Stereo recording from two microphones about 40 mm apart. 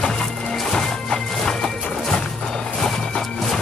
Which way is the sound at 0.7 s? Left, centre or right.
Centre.